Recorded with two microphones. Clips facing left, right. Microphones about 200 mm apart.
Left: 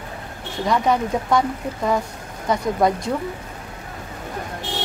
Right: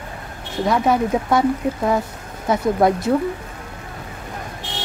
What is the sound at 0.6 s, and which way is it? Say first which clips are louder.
Speech: right 2 dB; 5° right (ahead or behind).